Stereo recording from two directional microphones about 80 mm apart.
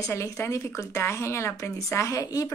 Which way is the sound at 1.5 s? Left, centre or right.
Left.